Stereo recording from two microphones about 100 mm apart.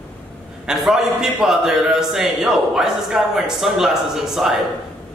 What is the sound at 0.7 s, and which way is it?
A man's voice, 5° right (ahead or behind).